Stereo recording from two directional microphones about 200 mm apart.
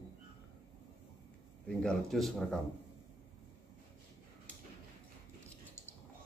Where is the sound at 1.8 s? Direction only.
5° left (ahead or behind).